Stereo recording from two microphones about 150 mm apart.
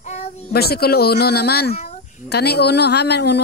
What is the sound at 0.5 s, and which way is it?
Speech, 90° left.